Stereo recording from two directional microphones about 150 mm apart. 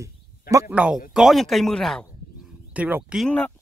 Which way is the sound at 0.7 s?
10° right (ahead or behind).